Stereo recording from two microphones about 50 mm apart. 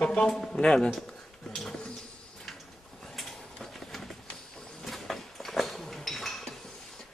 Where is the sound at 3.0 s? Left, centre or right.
Centre.